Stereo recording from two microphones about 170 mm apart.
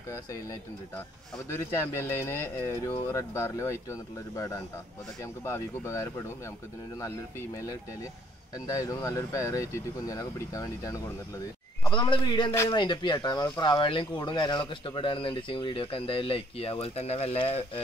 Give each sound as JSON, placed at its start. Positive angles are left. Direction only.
{"t": 0.1, "sound": "speech", "side_deg": 20}